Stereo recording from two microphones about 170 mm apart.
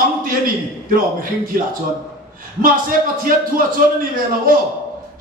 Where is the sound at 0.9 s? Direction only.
55° right (ahead or behind).